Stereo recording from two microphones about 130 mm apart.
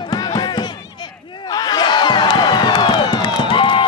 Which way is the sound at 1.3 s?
35° left (ahead or behind).